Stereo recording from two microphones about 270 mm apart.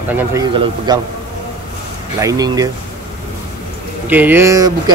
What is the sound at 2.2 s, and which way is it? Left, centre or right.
Speech, centre.